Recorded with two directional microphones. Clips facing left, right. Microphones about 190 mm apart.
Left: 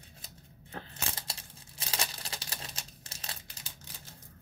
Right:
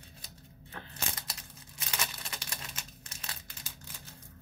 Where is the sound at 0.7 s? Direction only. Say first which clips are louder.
Left 1 dB; 30° left (ahead or behind).